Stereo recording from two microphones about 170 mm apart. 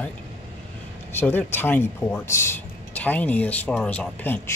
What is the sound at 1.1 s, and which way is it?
Speech, 10° left (ahead or behind).